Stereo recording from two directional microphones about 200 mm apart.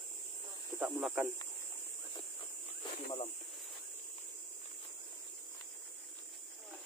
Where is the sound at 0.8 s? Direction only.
Centre (ahead or behind).